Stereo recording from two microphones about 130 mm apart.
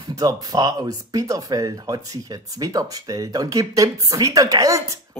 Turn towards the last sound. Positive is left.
turn(degrees=-25)  # may be behind; listen again after turning